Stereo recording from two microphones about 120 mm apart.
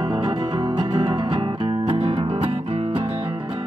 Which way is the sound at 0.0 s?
40° right (ahead or behind).